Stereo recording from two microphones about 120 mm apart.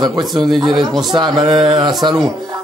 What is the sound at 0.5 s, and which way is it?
Speech, centre (ahead or behind).